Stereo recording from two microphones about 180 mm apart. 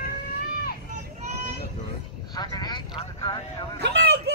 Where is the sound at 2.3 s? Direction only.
20° left (ahead or behind).